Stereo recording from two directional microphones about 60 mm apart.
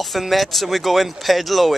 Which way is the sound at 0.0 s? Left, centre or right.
Centre.